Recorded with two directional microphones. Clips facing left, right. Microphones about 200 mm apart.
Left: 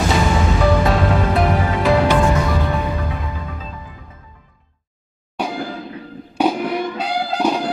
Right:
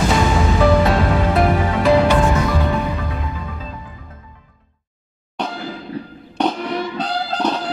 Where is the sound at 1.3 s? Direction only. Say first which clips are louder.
Right 1 dB; centre (ahead or behind).